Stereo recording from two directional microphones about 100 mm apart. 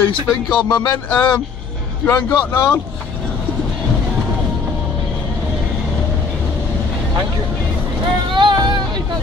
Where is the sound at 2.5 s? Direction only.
30° left (ahead or behind).